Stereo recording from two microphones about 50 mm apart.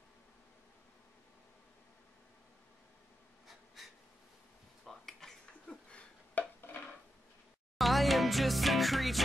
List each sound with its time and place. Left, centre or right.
3.4 s writing: centre
4.8 s dishes: centre
5.7 s a sound: left
6.4 s stir: left
7.7 s music: centre